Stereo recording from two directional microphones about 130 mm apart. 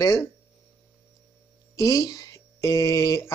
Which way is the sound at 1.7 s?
25° left (ahead or behind).